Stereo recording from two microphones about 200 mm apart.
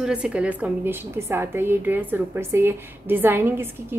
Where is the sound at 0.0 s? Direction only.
5° right (ahead or behind).